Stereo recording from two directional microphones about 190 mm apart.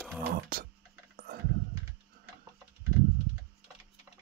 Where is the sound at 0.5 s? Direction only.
50° right (ahead or behind).